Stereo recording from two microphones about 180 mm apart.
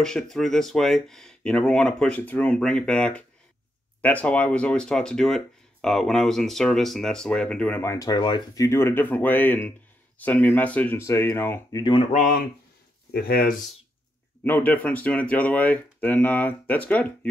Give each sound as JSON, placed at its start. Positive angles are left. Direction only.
{"t": 0.0, "sound": "speech", "side_deg": 0}
{"t": 11.8, "sound": "speech", "side_deg": 30}
{"t": 12.1, "sound": "speech", "side_deg": 50}
{"t": 14.4, "sound": "speech", "side_deg": 10}